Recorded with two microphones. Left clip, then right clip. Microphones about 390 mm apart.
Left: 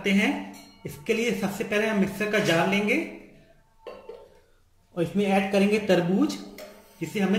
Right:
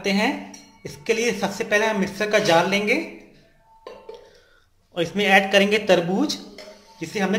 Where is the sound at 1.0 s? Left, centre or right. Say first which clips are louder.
Right 4 dB; centre.